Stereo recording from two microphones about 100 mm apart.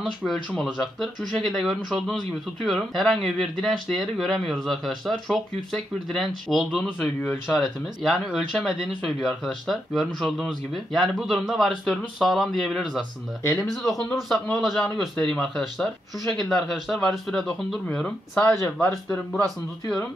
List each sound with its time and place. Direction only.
0.2 s speech: 5° left (ahead or behind)
18.5 s speech: 25° left (ahead or behind)